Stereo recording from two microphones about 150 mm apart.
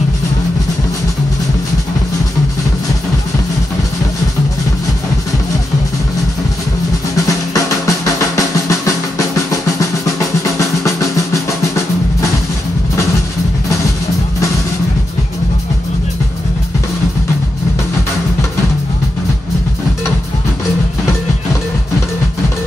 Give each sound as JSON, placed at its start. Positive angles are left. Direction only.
{"t": 7.2, "sound": "music", "side_deg": 20}
{"t": 10.4, "sound": "drum", "side_deg": 20}